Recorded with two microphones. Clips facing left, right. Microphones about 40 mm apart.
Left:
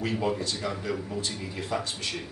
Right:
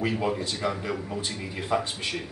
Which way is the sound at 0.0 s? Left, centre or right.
Centre.